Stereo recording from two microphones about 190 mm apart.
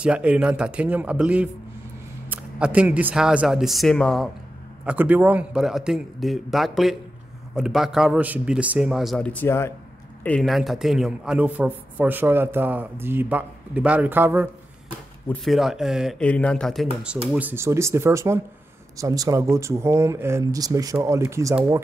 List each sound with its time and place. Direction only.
0.0 s a man's voice: 5° right (ahead or behind)
4.8 s a man's voice: 10° right (ahead or behind)
17.3 s a man's voice: 10° right (ahead or behind)